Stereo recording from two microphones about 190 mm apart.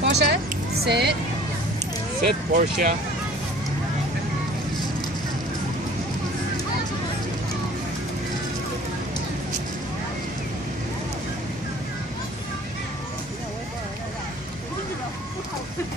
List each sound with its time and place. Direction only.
0.0 s a sound: 65° right (ahead or behind)
0.8 s speech: 60° right (ahead or behind)
2.2 s speech: 45° right (ahead or behind)